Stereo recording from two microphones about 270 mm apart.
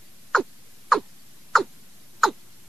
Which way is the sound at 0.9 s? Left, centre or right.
Centre.